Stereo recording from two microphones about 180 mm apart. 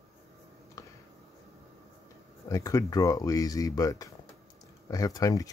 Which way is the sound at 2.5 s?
20° left (ahead or behind).